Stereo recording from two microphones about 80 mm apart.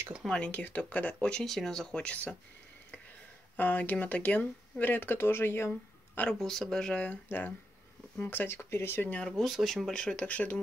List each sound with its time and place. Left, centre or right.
0.4 s speech: centre
3.5 s speech: left
6.4 s speech: centre
7.2 s speech: left
9.1 s speech: centre
9.5 s speech: centre